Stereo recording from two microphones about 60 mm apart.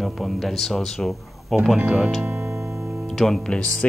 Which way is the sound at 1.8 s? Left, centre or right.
Centre.